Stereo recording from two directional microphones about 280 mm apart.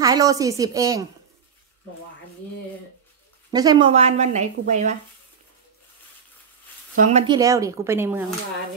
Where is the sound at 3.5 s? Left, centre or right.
Centre.